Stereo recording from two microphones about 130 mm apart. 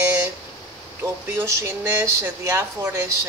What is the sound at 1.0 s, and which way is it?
A woman's voice, 20° right (ahead or behind).